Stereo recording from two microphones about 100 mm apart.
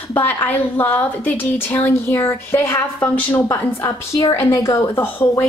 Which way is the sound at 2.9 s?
15° left (ahead or behind).